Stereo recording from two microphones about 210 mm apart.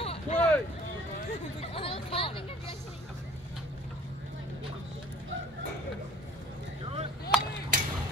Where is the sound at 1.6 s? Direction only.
25° left (ahead or behind).